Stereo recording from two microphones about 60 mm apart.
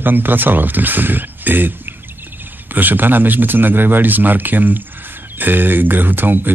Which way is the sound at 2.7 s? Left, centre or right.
Right.